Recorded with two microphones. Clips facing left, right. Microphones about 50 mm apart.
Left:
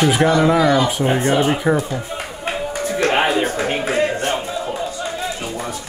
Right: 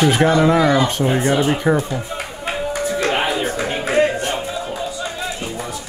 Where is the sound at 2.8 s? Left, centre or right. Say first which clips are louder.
Left 3 dB; left.